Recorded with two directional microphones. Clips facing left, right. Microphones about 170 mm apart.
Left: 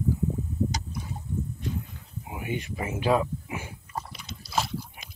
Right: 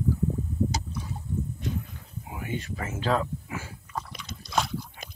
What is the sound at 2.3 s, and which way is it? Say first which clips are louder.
Speech: left 1 dB; 20° left (ahead or behind).